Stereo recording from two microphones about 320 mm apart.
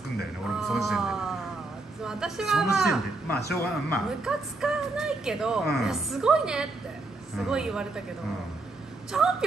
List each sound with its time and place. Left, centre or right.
0.6 s a woman's voice: centre
3.3 s speech: left
3.9 s a woman's voice: centre
9.1 s a woman's voice: centre